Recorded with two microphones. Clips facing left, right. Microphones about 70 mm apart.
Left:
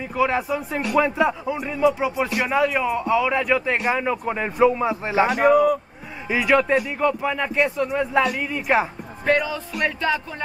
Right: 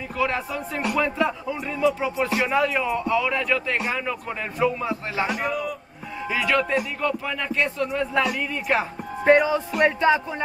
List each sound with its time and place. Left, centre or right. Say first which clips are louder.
0.2 s a man's voice: left 4 dB; centre
5.2 s a man's voice: left 11 dB; left
6.3 s a man's voice: left 4 dB; centre
9.4 s music: right 4 dB; right